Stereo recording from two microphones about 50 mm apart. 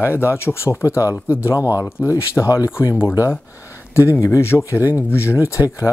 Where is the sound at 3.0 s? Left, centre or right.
Left.